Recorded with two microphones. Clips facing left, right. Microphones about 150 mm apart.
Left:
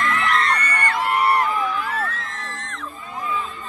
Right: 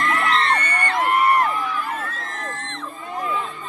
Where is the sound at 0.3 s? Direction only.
30° right (ahead or behind).